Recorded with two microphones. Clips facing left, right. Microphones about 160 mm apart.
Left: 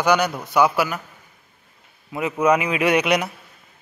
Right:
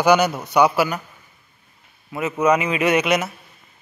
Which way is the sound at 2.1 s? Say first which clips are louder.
Even; 15° left (ahead or behind).